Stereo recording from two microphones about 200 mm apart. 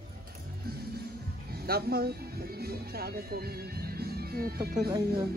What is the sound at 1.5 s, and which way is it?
Speech, 50° right (ahead or behind).